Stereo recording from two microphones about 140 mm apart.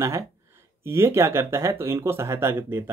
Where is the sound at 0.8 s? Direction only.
20° right (ahead or behind).